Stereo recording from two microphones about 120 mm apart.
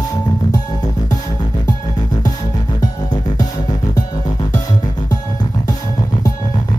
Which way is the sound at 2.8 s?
30° left (ahead or behind).